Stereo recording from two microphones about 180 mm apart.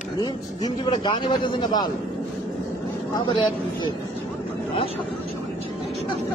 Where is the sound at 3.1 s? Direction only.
25° left (ahead or behind).